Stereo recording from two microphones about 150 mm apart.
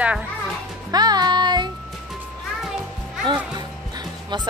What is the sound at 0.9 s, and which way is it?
Music, 30° right (ahead or behind).